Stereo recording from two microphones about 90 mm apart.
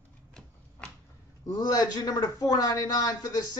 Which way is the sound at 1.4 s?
45° left (ahead or behind).